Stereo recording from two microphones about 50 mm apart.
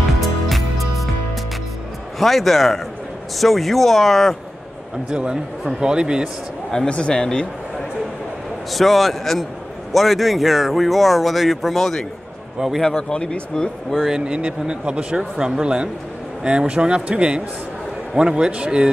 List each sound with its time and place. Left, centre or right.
0.2 s music: centre
2.1 s speech: centre
5.1 s speech: centre
6.7 s speech: centre
8.7 s speech: centre
12.5 s speech: centre
12.9 s speech: left
14.0 s speech: centre